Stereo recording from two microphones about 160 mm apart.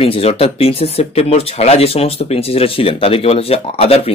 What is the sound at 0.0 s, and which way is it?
Speech, 40° left (ahead or behind).